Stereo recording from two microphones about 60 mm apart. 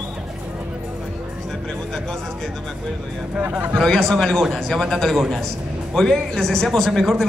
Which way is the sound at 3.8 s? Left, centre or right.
Centre.